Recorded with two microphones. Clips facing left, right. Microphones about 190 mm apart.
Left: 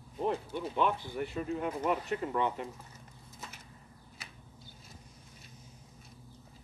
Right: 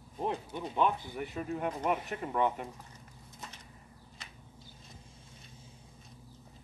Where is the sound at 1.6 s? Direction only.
10° right (ahead or behind).